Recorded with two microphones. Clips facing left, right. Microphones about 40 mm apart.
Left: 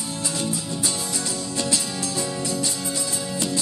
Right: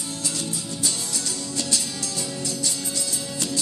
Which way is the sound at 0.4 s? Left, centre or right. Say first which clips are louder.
Left 3 dB; centre.